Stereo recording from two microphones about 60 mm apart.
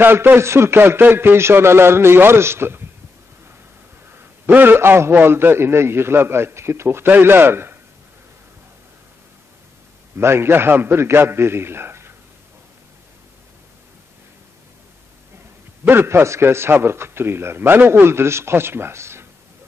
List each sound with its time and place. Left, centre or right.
0.0 s a man's voice: right
4.5 s a man's voice: right
7.1 s a man's voice: right
10.1 s a man's voice: right
15.9 s a man's voice: right